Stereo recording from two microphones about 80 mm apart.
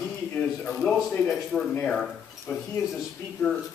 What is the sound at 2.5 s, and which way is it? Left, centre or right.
Speech, centre.